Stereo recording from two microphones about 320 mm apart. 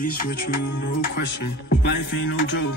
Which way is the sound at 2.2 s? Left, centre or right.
Left.